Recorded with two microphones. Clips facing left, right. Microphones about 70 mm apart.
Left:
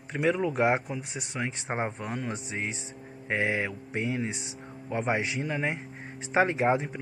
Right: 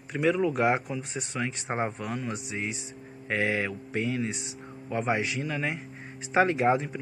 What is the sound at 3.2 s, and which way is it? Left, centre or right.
Speech, left.